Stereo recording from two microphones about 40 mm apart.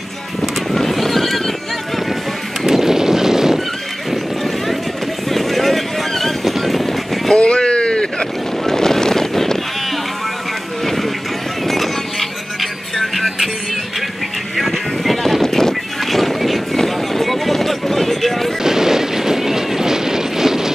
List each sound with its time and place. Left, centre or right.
0.4 s neigh: centre
2.6 s a sound: centre
5.3 s vehicle: centre
7.3 s vehicle: left
8.6 s wind noise: centre
11.6 s music: centre
14.6 s a sound: centre
15.4 s a sound: centre
18.6 s train: centre